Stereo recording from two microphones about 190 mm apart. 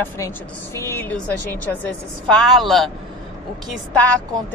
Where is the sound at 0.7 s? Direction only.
10° left (ahead or behind).